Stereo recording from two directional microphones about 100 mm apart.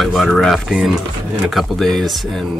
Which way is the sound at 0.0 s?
Centre (ahead or behind).